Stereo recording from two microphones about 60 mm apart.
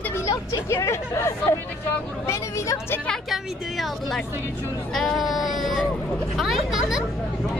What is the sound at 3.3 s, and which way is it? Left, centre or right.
A woman's voice, centre.